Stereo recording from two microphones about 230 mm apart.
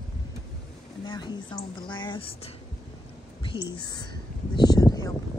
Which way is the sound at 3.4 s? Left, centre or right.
Left.